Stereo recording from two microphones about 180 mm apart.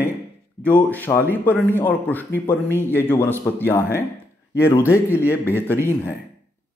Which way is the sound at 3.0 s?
10° left (ahead or behind).